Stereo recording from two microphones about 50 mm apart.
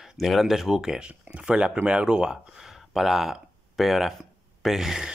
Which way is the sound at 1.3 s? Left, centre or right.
Right.